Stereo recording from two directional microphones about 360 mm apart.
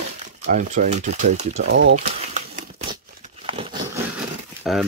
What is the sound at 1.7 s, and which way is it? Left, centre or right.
Speech, right.